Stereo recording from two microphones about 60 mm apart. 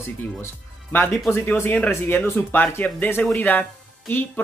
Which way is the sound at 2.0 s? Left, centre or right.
Left.